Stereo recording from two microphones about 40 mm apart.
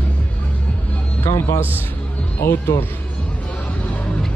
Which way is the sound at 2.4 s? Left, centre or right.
Left.